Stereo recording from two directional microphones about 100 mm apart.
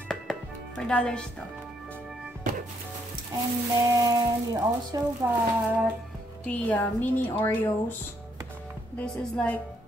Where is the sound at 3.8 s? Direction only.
40° right (ahead or behind).